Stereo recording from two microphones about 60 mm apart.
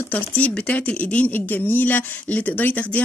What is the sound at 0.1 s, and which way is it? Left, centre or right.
Speech, left.